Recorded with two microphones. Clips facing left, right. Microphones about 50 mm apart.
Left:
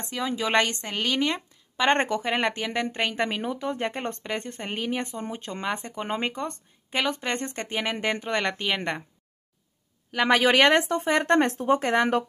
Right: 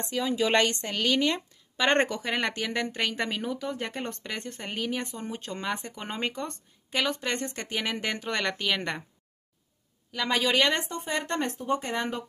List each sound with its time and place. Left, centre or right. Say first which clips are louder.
0.4 s speech: left 1 dB; centre
10.3 s speech: left 6 dB; left